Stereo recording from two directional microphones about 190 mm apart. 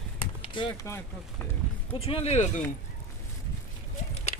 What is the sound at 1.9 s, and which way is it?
Speech, 30° left (ahead or behind).